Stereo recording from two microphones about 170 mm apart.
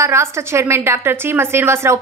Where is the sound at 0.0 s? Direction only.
15° right (ahead or behind).